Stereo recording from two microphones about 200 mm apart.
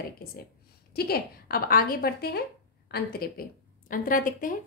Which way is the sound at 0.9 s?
50° left (ahead or behind).